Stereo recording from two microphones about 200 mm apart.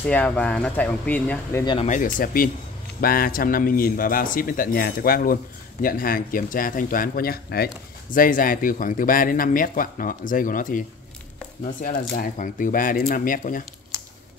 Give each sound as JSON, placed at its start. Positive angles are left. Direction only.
{"t": 0.0, "sound": "speech", "side_deg": 5}
{"t": 1.6, "sound": "speech", "side_deg": 20}
{"t": 1.9, "sound": "a man's voice", "side_deg": 40}